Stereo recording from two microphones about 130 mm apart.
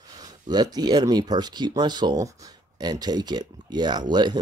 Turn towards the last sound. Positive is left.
turn(degrees=-35)  # may be behind; listen again after turning